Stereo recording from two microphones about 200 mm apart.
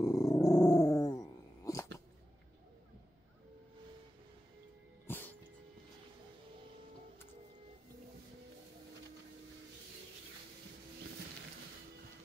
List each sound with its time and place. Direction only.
0.0 s dog: 15° left (ahead or behind)
5.0 s music: 10° left (ahead or behind)